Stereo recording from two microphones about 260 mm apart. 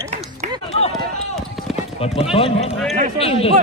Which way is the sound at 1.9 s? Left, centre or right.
Left.